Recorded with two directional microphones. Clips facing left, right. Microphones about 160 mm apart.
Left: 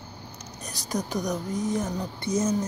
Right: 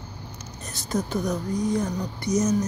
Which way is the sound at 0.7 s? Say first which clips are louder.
Right 3 dB; 15° left (ahead or behind).